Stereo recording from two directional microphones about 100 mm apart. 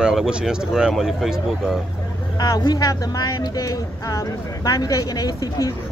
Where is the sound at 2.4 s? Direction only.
40° left (ahead or behind).